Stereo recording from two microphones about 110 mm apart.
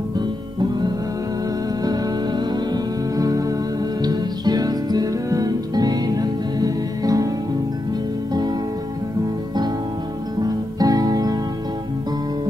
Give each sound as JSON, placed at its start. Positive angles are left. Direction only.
{"t": 0.6, "sound": "music", "side_deg": -40}
{"t": 10.4, "sound": "music", "side_deg": -35}